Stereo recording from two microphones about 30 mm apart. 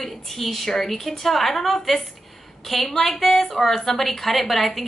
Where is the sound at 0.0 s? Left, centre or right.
Centre.